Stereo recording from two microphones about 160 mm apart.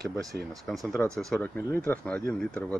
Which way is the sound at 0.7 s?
Centre (ahead or behind).